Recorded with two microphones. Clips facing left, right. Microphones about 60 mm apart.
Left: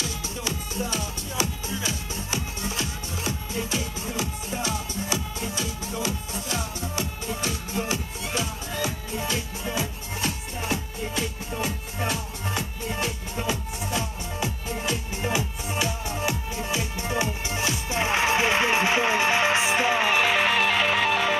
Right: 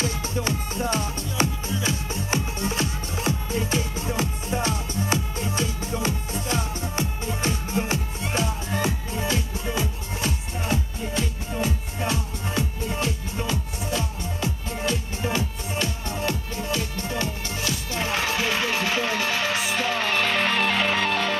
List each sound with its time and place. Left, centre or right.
0.0 s music: right
9.2 s music: centre
10.2 s music: centre
12.5 s music: centre